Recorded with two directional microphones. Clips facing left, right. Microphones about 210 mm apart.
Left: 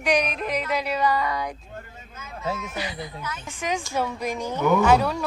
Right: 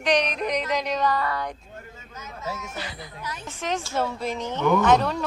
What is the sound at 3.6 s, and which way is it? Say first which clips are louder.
A woman's voice: even; 15° left (ahead or behind).